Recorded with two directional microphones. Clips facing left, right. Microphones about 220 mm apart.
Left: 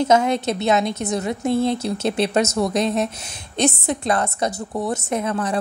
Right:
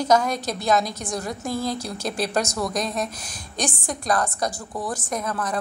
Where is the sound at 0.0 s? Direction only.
25° left (ahead or behind).